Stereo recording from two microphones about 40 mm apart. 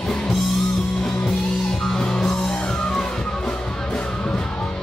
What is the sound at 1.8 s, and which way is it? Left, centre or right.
Music, centre.